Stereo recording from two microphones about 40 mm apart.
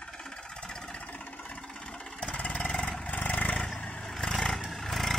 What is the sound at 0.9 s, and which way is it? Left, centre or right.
Vehicle, left.